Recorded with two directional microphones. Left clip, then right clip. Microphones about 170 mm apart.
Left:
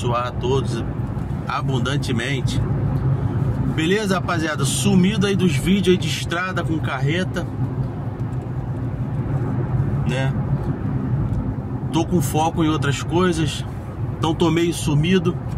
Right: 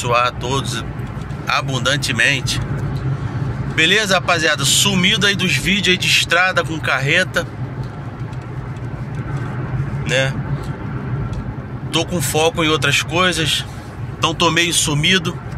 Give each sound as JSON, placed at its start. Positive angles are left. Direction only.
{"t": 0.1, "sound": "speech", "side_deg": 5}
{"t": 3.7, "sound": "speech", "side_deg": 5}
{"t": 10.0, "sound": "speech", "side_deg": 10}
{"t": 11.9, "sound": "speech", "side_deg": 10}
{"t": 14.7, "sound": "speech", "side_deg": 0}